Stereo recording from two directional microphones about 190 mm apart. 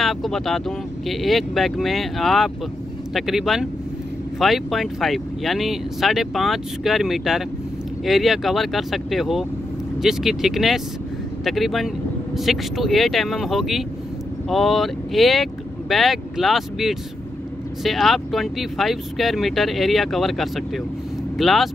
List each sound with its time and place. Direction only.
0.0 s speech: centre (ahead or behind)